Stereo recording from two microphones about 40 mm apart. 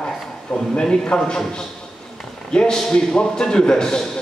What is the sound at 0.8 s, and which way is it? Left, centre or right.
A man's voice, centre.